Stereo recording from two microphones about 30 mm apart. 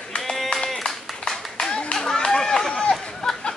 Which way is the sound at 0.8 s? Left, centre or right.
Left.